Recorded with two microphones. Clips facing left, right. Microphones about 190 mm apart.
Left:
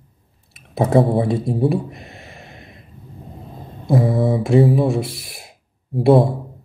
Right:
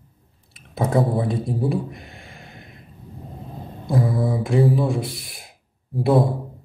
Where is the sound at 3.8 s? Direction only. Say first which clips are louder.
Left 5 dB; 25° left (ahead or behind).